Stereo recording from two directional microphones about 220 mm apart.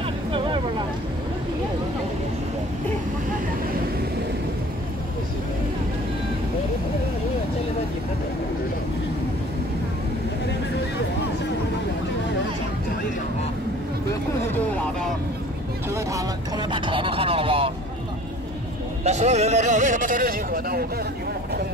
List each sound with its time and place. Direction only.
0.3 s vehicle: 20° right (ahead or behind)
15.9 s vehicle: 15° right (ahead or behind)
19.0 s a man's voice: 30° right (ahead or behind)